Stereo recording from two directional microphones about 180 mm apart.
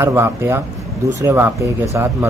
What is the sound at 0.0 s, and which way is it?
A man's voice, 15° right (ahead or behind).